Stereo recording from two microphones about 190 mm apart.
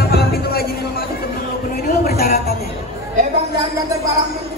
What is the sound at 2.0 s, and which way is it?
Speech, 55° left (ahead or behind).